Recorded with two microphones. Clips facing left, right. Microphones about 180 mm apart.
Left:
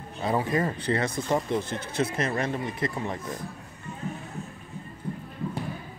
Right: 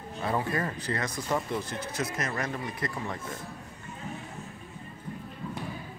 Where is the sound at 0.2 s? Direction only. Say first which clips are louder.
Left 4 dB; 20° left (ahead or behind).